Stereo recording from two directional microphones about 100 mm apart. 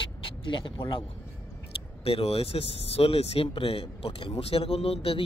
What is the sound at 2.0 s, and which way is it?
Speech, 75° left (ahead or behind).